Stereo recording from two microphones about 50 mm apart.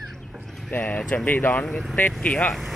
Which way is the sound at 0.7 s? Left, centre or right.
Left.